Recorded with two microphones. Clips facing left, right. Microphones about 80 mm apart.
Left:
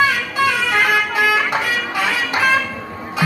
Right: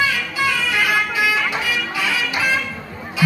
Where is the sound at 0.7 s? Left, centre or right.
Left.